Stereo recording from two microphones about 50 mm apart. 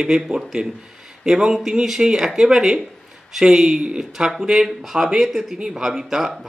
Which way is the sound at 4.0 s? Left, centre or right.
Centre.